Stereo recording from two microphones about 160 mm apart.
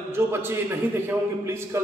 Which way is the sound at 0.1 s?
15° right (ahead or behind).